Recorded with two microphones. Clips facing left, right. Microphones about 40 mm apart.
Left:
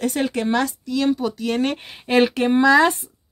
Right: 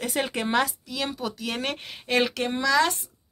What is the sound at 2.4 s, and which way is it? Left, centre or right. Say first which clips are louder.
Speech: left 10 dB; left.